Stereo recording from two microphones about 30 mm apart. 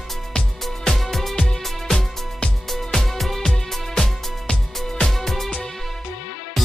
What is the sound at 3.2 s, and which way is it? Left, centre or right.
Music, centre.